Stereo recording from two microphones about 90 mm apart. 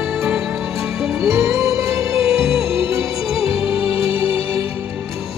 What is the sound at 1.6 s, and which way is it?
Music, 35° right (ahead or behind).